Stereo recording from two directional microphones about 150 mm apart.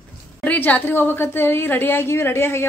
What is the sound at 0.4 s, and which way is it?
A woman's voice, 10° left (ahead or behind).